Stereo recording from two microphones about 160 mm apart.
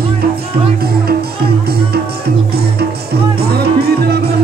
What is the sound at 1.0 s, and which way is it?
Music, 75° right (ahead or behind).